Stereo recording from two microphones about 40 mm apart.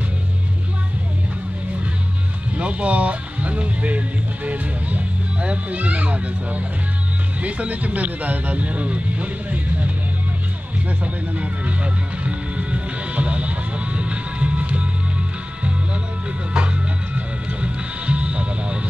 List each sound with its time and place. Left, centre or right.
2.5 s speech: right
11.3 s music: right